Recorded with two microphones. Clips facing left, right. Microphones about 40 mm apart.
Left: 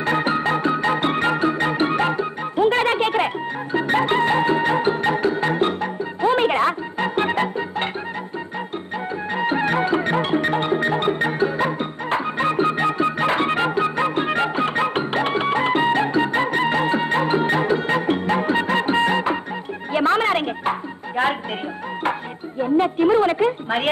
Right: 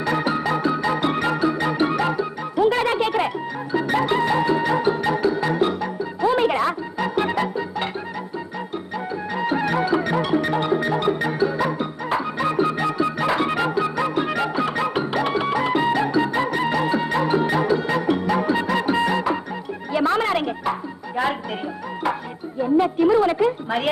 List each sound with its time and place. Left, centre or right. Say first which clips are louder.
0.0 s music: left 2 dB; left
9.3 s music: left 2 dB; left
19.9 s a sound: left 2 dB; left
21.2 s music: left 2 dB; left
22.6 s music: even; left